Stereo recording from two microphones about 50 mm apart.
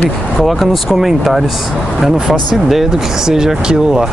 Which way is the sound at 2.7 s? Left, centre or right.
Centre.